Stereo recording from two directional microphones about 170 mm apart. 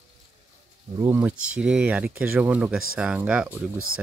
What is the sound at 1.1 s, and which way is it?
Speech, 10° right (ahead or behind).